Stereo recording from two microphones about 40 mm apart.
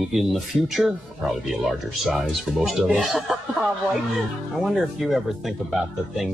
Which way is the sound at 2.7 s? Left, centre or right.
Right.